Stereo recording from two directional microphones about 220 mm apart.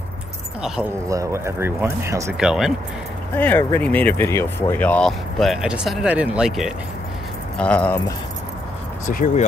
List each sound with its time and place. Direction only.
0.6 s speech: 5° right (ahead or behind)
1.0 s speech: 15° right (ahead or behind)
3.3 s speech: 10° left (ahead or behind)
9.1 s speech: 35° left (ahead or behind)